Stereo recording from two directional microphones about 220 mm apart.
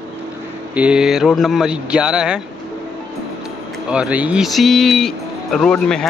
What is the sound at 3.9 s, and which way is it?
Speech, 5° right (ahead or behind).